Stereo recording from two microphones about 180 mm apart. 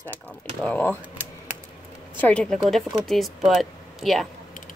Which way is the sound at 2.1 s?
5° left (ahead or behind).